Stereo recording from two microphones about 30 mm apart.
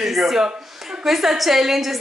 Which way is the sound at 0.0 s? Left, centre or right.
Centre.